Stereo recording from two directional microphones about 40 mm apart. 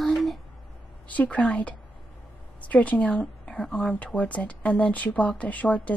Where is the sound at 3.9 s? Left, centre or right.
Left.